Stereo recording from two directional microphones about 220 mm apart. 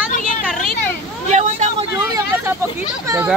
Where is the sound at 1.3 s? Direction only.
35° right (ahead or behind).